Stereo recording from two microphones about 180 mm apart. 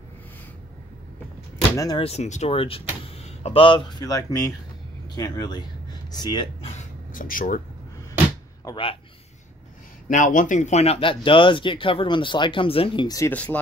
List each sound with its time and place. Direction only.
1.8 s speech: 20° left (ahead or behind)
2.0 s speech: 40° left (ahead or behind)
6.8 s a sound: 50° left (ahead or behind)
8.6 s a man's voice: 30° left (ahead or behind)
10.0 s speech: 45° left (ahead or behind); by 13.3 s 20° left (ahead or behind)
13.3 s speech: 10° left (ahead or behind)